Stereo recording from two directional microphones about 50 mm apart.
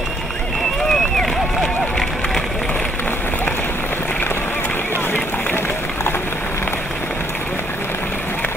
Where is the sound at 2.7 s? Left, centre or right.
Left.